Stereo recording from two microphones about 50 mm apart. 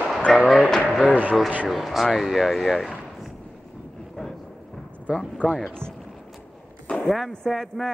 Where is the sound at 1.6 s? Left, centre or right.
Centre.